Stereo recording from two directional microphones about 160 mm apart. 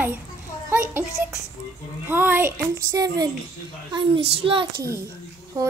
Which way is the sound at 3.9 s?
35° right (ahead or behind).